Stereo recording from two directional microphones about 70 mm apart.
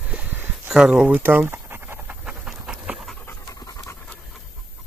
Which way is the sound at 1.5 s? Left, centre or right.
Right.